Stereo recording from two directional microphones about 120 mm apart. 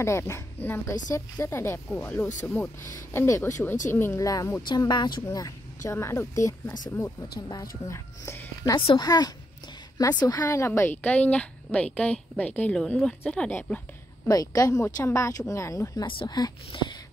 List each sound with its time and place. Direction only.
0.0 s speech: 25° left (ahead or behind)
1.9 s a woman's voice: 10° left (ahead or behind)
4.6 s speech: 35° left (ahead or behind)
5.9 s speech: 20° left (ahead or behind)
8.7 s a woman's voice: 40° left (ahead or behind); by 13.7 s 15° left (ahead or behind)
14.2 s speech: 30° left (ahead or behind)
16.1 s speech: 40° left (ahead or behind)